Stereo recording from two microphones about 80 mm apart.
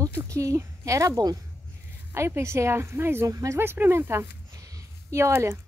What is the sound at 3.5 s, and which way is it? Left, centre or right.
Speech, right.